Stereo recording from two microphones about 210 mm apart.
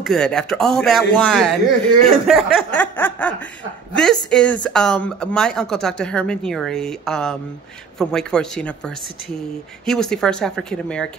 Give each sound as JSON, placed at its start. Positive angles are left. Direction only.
{"t": 0.0, "sound": "a woman's voice", "side_deg": 5}